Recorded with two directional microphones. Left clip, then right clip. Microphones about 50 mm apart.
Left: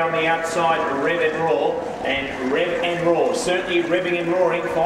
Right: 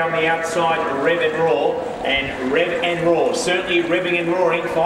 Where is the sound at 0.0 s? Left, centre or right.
Centre.